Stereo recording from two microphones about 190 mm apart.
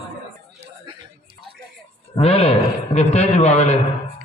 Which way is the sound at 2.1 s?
30° left (ahead or behind).